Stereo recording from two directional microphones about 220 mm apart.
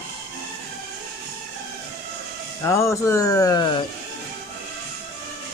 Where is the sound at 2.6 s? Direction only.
15° left (ahead or behind).